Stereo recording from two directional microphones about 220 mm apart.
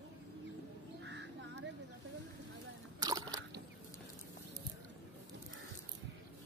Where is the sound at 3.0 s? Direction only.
15° right (ahead or behind).